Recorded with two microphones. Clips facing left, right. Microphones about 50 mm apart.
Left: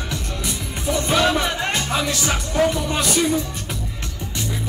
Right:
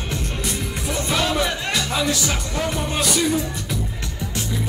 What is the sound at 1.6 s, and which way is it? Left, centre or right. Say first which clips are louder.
Speech: left 1 dB; left.